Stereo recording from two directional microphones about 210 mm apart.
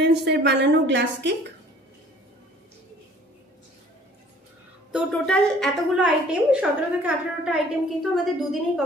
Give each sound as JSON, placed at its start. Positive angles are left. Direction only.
{"t": 0.0, "sound": "a woman's voice", "side_deg": -50}
{"t": 4.9, "sound": "a woman's voice", "side_deg": 5}